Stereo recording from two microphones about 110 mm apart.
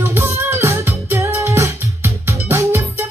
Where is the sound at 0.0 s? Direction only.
20° right (ahead or behind).